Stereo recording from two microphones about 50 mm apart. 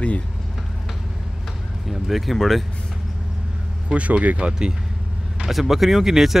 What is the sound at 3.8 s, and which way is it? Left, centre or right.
Speech, right.